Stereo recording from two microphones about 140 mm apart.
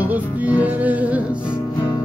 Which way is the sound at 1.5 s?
30° left (ahead or behind).